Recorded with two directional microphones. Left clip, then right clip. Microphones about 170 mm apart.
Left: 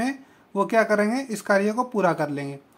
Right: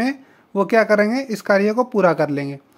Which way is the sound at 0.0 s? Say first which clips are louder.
Right 5 dB; 35° right (ahead or behind).